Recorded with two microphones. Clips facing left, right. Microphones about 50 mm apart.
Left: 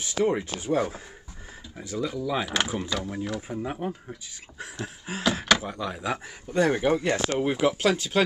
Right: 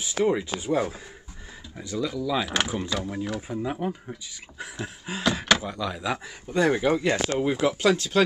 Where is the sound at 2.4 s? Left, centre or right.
Centre.